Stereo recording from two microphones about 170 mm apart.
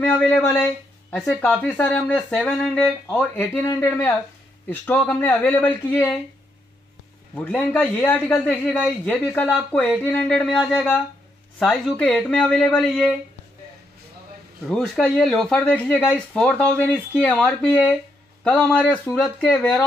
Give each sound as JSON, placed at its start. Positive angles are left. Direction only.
{"t": 0.0, "sound": "speech", "side_deg": 10}
{"t": 7.3, "sound": "speech", "side_deg": 10}
{"t": 14.7, "sound": "speech", "side_deg": 5}